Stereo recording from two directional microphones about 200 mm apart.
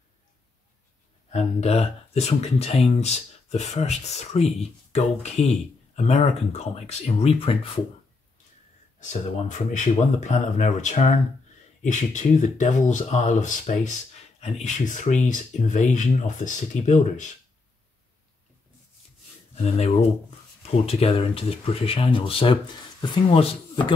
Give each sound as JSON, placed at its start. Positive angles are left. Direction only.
{"t": 1.3, "sound": "speech", "side_deg": 30}
{"t": 9.0, "sound": "speech", "side_deg": 40}
{"t": 19.5, "sound": "speech", "side_deg": 35}